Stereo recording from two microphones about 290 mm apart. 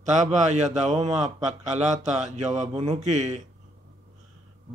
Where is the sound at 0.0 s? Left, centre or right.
Right.